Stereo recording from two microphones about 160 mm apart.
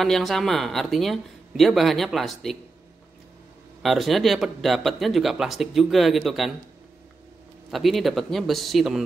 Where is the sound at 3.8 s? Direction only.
Centre (ahead or behind).